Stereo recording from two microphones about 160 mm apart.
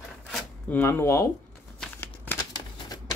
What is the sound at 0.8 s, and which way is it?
Speech, 15° left (ahead or behind).